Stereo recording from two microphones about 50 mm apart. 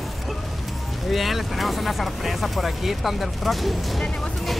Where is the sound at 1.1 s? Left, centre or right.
Centre.